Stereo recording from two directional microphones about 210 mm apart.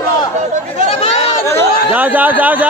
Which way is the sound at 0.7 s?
30° left (ahead or behind).